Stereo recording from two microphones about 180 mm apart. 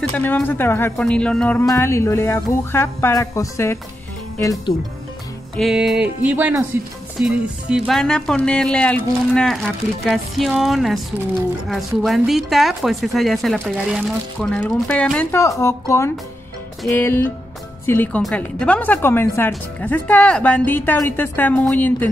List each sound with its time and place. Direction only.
0.1 s a woman's voice: 10° left (ahead or behind)
5.6 s speech: centre (ahead or behind)
12.0 s a woman's voice: centre (ahead or behind)